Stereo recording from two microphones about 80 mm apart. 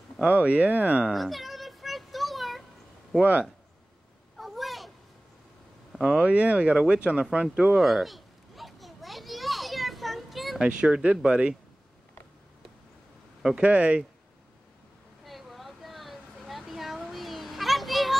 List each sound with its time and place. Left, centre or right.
0.2 s speech: centre
1.1 s a sound: centre
4.4 s a sound: centre
5.9 s speech: centre
6.2 s speech: centre
7.8 s children playing: centre
10.6 s speech: centre
13.6 s speech: centre
15.2 s a sound: centre